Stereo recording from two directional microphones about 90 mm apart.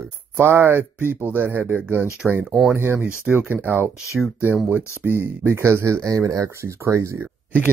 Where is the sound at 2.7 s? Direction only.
25° right (ahead or behind).